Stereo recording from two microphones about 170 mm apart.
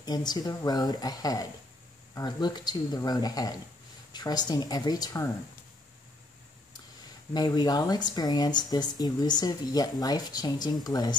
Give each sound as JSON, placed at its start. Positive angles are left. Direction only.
{"t": 0.0, "sound": "speech", "side_deg": 25}
{"t": 7.3, "sound": "speech", "side_deg": 25}